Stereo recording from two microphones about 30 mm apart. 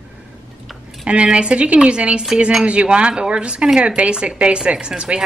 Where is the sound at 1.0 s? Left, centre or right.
Right.